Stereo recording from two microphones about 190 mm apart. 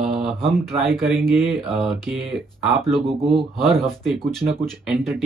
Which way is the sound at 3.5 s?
Centre (ahead or behind).